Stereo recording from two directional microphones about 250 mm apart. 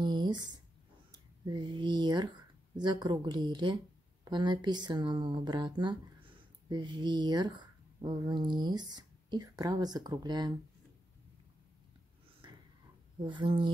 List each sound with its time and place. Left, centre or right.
0.0 s a sound: centre
1.5 s speech: centre
13.2 s speech: centre